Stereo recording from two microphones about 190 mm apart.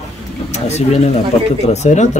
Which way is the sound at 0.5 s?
35° left (ahead or behind).